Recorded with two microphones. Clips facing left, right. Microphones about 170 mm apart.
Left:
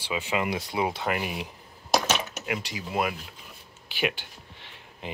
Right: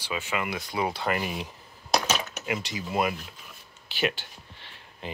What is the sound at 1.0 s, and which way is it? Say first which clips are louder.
Speech: even; 5° left (ahead or behind).